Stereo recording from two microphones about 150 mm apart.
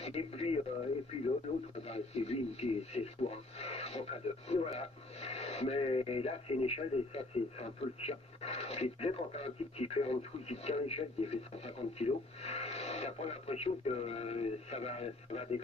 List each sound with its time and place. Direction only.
0.0 s speech: 40° left (ahead or behind)
1.9 s speech: 45° left (ahead or behind)